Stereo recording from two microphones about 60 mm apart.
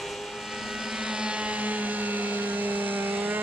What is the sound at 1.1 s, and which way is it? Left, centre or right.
Vehicle, centre.